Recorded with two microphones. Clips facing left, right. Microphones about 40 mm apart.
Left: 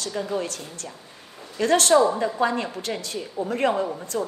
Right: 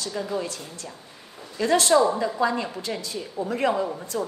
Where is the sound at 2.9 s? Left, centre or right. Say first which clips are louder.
Left 1 dB; centre.